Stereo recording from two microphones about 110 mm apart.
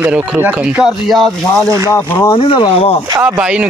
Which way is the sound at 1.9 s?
30° left (ahead or behind).